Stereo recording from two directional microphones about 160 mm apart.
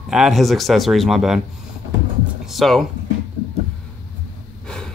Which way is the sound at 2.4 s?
Centre (ahead or behind).